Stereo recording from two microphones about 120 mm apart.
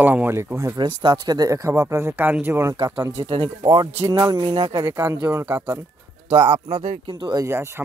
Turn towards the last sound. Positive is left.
turn(degrees=-20)  # may be behind; listen again after turning